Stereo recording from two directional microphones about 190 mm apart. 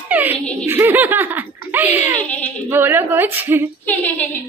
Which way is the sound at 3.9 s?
10° left (ahead or behind).